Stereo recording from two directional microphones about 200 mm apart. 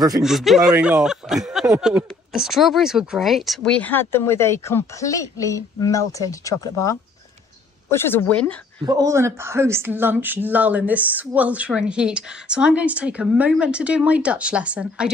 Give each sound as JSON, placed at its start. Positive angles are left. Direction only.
{"t": 0.2, "sound": "speech", "side_deg": 0}
{"t": 8.8, "sound": "speech", "side_deg": -15}